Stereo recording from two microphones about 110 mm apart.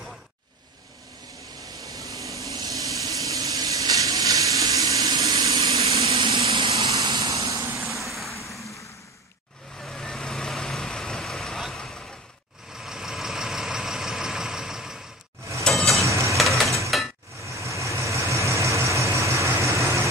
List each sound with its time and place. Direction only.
1.7 s vehicle: 30° right (ahead or behind)
7.9 s vehicle: centre (ahead or behind)
9.8 s vehicle: 5° left (ahead or behind)
15.6 s mechanisms: 5° left (ahead or behind)
16.3 s music: centre (ahead or behind)
17.5 s vehicle: 30° right (ahead or behind)